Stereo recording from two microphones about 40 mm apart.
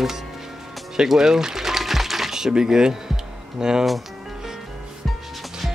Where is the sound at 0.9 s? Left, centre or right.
Centre.